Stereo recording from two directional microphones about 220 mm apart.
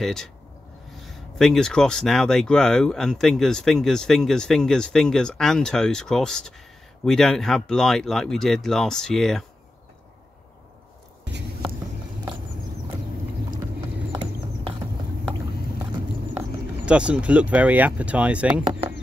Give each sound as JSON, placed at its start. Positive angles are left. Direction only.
{"t": 0.0, "sound": "speech", "side_deg": 0}
{"t": 14.1, "sound": "horse", "side_deg": -20}
{"t": 16.3, "sound": "speech", "side_deg": -5}
{"t": 18.7, "sound": "chop", "side_deg": -25}